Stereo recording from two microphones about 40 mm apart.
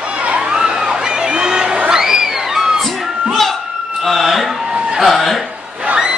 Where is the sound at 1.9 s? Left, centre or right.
Centre.